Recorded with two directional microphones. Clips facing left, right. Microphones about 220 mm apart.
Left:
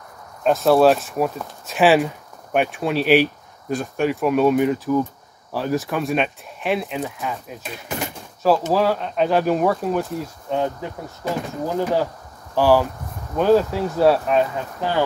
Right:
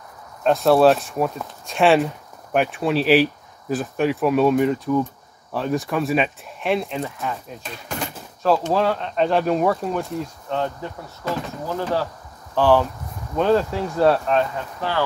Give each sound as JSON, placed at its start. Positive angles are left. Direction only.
{"t": 0.4, "sound": "speech", "side_deg": 0}